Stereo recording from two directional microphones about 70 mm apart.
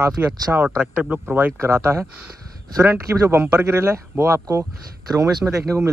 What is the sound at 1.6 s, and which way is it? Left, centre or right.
Speech, right.